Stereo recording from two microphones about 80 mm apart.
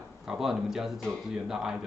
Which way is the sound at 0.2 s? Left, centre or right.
Centre.